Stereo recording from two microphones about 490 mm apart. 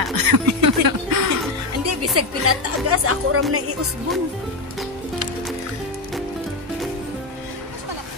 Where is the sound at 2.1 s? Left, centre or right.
Right.